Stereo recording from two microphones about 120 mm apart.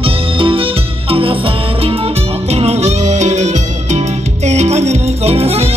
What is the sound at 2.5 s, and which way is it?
Music, 60° right (ahead or behind).